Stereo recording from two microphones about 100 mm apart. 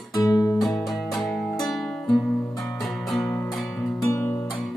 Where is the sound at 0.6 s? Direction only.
Centre (ahead or behind).